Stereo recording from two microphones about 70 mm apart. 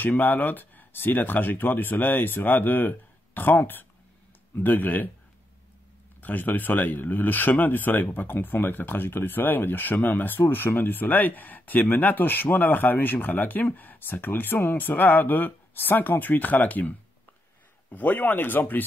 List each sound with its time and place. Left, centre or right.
0.0 s speech: left
6.2 s speech: left
17.9 s speech: left